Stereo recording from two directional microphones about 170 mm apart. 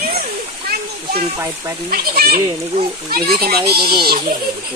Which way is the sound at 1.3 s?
15° right (ahead or behind).